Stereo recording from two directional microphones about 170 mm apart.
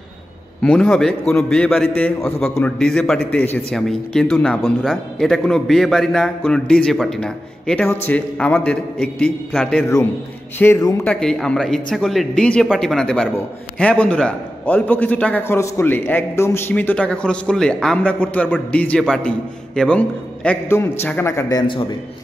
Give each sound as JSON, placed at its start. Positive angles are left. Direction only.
{"t": 0.6, "sound": "a man's voice", "side_deg": 5}
{"t": 10.6, "sound": "a man's voice", "side_deg": 20}
{"t": 11.1, "sound": "a man's voice", "side_deg": 5}